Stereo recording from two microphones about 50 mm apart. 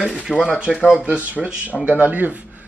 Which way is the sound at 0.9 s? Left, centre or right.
Centre.